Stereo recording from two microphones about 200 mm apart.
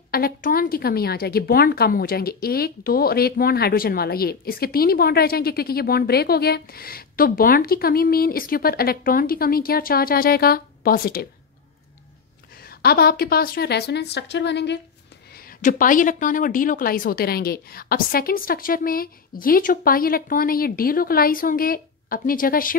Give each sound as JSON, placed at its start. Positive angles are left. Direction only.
{"t": 0.1, "sound": "a woman's voice", "side_deg": 45}
{"t": 12.6, "sound": "a woman's voice", "side_deg": 50}
{"t": 15.3, "sound": "a woman's voice", "side_deg": 45}